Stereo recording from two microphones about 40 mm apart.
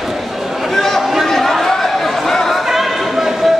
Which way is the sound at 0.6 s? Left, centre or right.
Centre.